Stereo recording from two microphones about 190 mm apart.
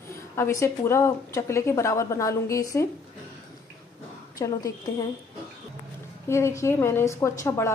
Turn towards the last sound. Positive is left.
turn(degrees=15)  # may be behind; listen again after turning